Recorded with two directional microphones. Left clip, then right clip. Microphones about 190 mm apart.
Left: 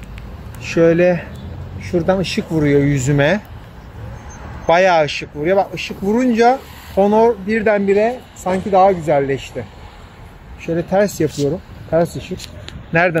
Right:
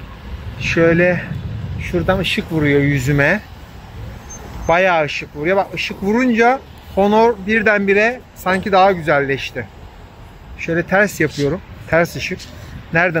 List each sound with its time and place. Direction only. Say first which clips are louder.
0.6 s speech: even; 15° left (ahead or behind)
4.6 s speech: left 2 dB; 10° left (ahead or behind)